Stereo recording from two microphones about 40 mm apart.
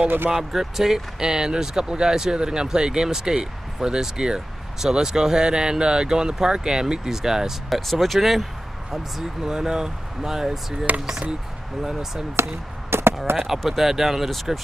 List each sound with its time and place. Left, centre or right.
0.3 s speech: centre
7.7 s speech: centre
8.9 s speech: centre
12.4 s speech: right
12.9 s chop: right
13.3 s speech: right
13.7 s speech: centre